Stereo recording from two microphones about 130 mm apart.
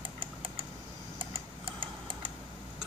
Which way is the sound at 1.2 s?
45° right (ahead or behind).